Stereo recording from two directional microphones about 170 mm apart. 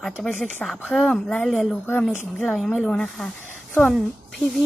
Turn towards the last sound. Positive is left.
turn(degrees=0)  # may be behind; listen again after turning